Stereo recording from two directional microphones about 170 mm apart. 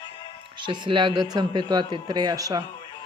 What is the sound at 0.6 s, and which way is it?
A man's voice, 25° right (ahead or behind).